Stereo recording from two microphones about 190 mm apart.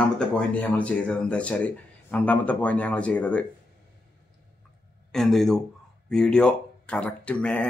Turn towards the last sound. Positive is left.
turn(degrees=5)  # may be behind; listen again after turning